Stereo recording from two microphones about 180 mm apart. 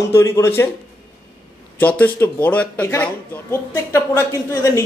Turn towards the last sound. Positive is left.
turn(degrees=15)  # may be behind; listen again after turning